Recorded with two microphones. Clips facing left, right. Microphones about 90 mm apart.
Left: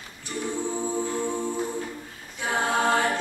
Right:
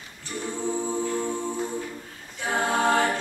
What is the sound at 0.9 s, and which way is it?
A capella, 15° left (ahead or behind).